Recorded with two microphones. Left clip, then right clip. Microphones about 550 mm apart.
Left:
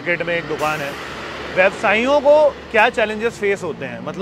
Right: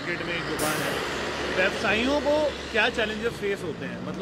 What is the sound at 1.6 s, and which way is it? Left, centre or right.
Speech, left.